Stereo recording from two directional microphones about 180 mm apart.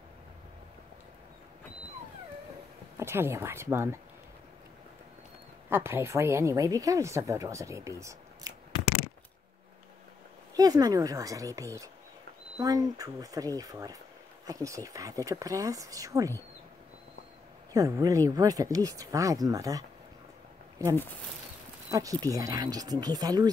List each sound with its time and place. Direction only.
3.0 s a woman's voice: 15° right (ahead or behind)
5.7 s a woman's voice: 15° right (ahead or behind)
10.5 s speech: 20° right (ahead or behind)
17.7 s speech: 20° right (ahead or behind)
20.8 s a woman's voice: 20° right (ahead or behind)